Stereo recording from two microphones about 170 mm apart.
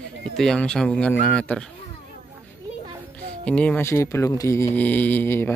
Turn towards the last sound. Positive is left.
turn(degrees=15)  # may be behind; listen again after turning